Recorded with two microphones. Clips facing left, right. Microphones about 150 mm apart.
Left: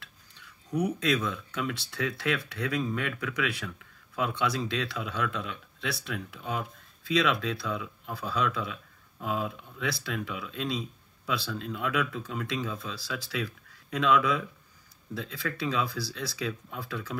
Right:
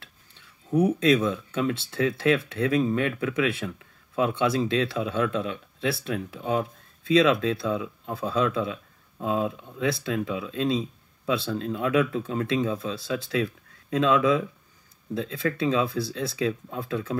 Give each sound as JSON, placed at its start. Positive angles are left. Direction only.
{"t": 0.0, "sound": "speech", "side_deg": -25}